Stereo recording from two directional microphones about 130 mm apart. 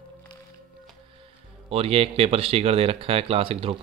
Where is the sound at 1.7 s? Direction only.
50° right (ahead or behind).